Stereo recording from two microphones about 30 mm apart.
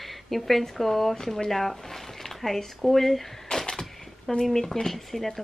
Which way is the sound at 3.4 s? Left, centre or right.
Centre.